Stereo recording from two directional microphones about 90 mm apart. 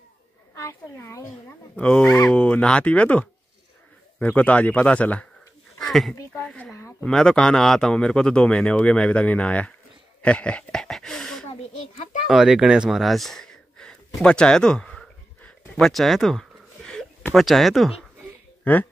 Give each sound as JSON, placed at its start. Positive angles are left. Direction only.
{"t": 0.6, "sound": "a woman's voice", "side_deg": 30}
{"t": 1.8, "sound": "speech", "side_deg": 15}
{"t": 5.8, "sound": "a sound", "side_deg": 0}
{"t": 6.3, "sound": "speech", "side_deg": 15}
{"t": 12.3, "sound": "a sound", "side_deg": -5}
{"t": 17.3, "sound": "speech", "side_deg": 0}
{"t": 18.6, "sound": "speech", "side_deg": 20}